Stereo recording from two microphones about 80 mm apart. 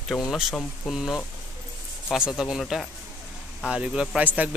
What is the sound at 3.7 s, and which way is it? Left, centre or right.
Speech, centre.